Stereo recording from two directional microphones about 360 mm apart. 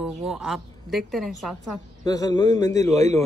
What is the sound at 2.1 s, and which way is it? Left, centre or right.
A man's voice, centre.